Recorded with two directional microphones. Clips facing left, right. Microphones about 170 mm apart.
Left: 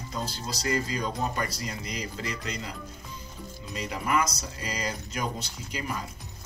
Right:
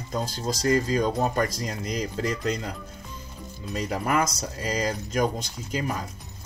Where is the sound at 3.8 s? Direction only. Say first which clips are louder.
Right 3 dB; 45° right (ahead or behind).